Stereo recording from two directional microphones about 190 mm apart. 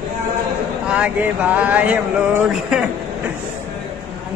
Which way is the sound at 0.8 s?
5° right (ahead or behind).